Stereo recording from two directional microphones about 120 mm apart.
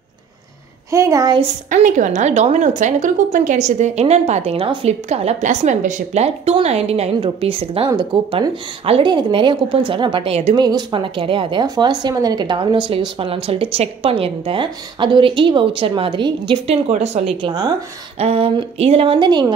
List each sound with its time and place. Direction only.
0.9 s a woman's voice: 25° right (ahead or behind)
1.4 s a woman's voice: 85° right; by 7.9 s 55° right (ahead or behind)
7.9 s speech: 40° right (ahead or behind)
9.0 s speech: 40° right (ahead or behind)
16.6 s a woman's voice: 65° right (ahead or behind); by 17.7 s 40° right (ahead or behind)
18.2 s a woman's voice: 55° right (ahead or behind)
19.1 s a woman's voice: 40° right (ahead or behind)